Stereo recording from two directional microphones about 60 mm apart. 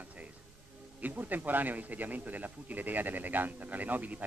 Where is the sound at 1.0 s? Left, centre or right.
Right.